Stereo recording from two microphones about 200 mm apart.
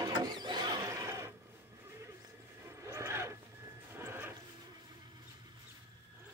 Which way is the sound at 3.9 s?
10° right (ahead or behind).